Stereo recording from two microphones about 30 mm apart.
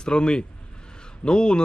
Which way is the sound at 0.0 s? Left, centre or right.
Left.